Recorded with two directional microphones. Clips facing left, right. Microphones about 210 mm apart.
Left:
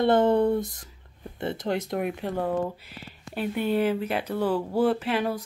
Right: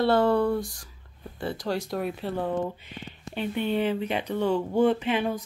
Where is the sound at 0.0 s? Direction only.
20° left (ahead or behind).